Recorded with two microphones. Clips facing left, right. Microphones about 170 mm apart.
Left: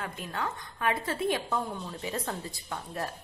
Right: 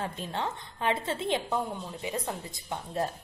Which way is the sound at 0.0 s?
30° right (ahead or behind).